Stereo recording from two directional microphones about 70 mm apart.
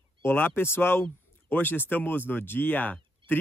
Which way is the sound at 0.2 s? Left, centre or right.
Left.